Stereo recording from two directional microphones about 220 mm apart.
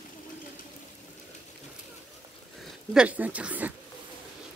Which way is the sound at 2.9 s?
5° right (ahead or behind).